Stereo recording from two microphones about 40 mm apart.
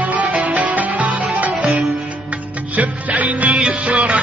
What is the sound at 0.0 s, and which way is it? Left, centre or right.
Music, right.